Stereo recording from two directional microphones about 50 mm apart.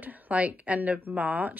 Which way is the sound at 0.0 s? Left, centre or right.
Right.